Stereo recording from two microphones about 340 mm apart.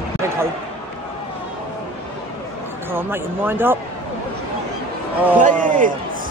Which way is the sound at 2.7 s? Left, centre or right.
Centre.